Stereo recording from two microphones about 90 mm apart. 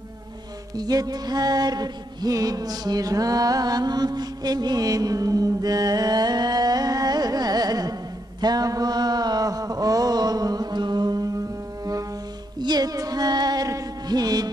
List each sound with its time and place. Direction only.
0.7 s music: 45° right (ahead or behind)
8.4 s mantra: 45° right (ahead or behind)
12.5 s music: 50° right (ahead or behind)